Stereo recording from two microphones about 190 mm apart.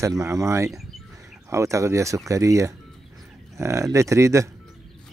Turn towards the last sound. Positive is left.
turn(degrees=-15)  # may be behind; listen again after turning